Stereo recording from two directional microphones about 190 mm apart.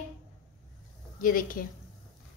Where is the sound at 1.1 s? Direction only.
45° left (ahead or behind).